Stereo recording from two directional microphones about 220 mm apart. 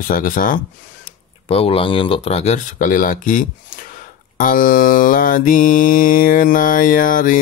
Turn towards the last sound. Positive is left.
turn(degrees=40)  # may be behind; listen again after turning